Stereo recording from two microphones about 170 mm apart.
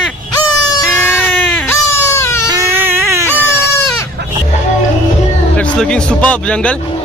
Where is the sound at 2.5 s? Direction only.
15° right (ahead or behind).